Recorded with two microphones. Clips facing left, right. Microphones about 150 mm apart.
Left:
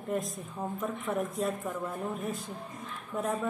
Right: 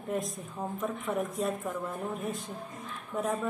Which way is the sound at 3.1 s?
Centre (ahead or behind).